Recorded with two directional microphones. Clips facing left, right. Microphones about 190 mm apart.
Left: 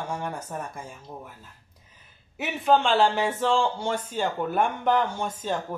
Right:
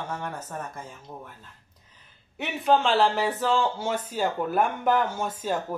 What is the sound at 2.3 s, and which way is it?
Speech, centre (ahead or behind).